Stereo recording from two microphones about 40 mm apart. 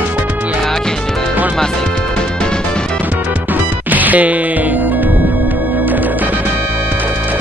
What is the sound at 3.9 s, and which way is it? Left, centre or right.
Music, right.